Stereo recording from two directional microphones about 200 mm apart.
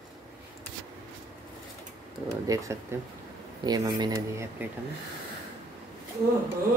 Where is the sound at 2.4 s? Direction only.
15° right (ahead or behind).